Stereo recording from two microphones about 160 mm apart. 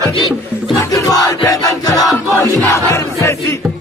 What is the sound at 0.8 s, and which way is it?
Crowd, 20° left (ahead or behind).